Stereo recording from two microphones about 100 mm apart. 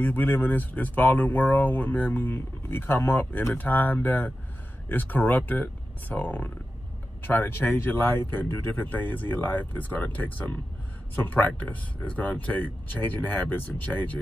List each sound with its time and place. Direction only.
0.0 s speech: 20° left (ahead or behind)